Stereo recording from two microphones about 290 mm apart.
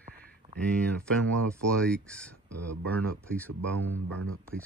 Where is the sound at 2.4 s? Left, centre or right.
Right.